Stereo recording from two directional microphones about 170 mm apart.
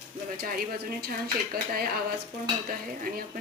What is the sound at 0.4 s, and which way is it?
Speech, 60° right (ahead or behind).